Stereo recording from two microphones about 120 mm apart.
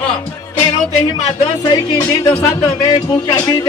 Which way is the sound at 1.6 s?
35° left (ahead or behind).